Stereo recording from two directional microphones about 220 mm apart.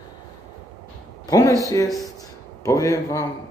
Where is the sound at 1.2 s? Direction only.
15° left (ahead or behind).